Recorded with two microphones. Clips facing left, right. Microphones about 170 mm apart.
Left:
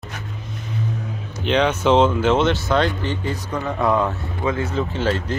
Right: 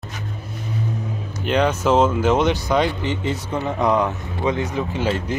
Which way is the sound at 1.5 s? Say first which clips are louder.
Left 1 dB; 10° right (ahead or behind).